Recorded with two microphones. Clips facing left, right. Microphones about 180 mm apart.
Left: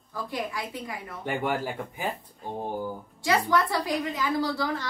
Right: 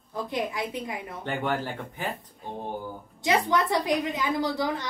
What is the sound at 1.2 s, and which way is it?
Speech, 10° left (ahead or behind).